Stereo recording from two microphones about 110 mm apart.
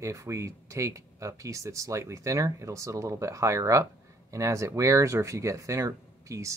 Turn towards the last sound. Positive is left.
turn(degrees=-30)  # may be behind; listen again after turning